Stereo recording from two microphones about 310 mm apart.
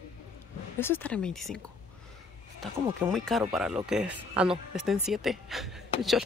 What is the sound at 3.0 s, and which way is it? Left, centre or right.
Speech, centre.